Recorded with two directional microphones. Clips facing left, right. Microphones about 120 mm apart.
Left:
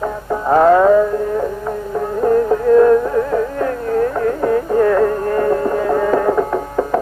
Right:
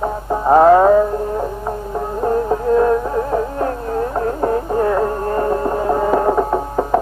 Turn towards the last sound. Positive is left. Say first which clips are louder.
# even
turn(degrees=-25)  # may be behind; listen again after turning